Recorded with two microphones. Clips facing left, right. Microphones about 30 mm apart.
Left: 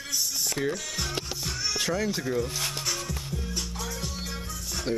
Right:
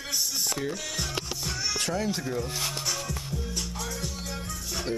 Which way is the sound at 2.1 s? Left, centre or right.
Centre.